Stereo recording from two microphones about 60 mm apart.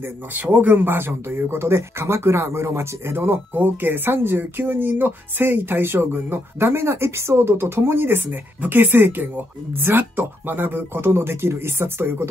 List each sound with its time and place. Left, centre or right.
0.0 s speech: right